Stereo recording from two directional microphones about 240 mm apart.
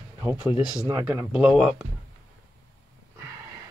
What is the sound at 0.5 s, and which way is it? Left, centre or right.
Speech, centre.